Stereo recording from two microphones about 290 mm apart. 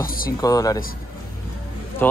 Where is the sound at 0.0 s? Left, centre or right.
Left.